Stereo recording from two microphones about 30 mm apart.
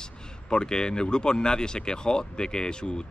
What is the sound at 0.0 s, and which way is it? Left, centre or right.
Speech, left.